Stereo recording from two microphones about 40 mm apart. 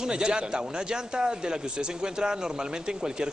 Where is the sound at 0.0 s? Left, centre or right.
Right.